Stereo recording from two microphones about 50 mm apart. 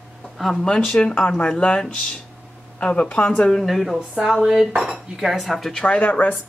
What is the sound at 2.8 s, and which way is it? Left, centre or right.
Speech, left.